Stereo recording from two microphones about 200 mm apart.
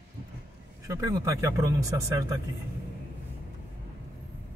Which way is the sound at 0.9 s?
15° right (ahead or behind).